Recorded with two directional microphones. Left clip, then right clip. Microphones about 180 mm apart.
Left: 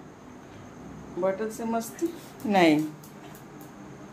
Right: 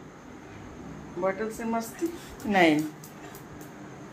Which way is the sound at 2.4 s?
20° left (ahead or behind).